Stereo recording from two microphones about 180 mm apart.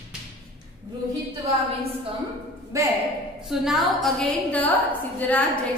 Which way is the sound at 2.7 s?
15° right (ahead or behind).